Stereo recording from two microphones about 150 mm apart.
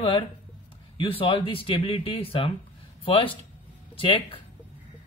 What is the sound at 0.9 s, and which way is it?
Speech, 35° left (ahead or behind).